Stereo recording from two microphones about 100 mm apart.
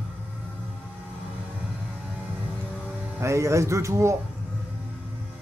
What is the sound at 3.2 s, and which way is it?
Speech, 30° right (ahead or behind).